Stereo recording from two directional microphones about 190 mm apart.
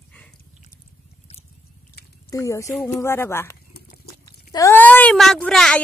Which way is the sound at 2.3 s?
15° left (ahead or behind).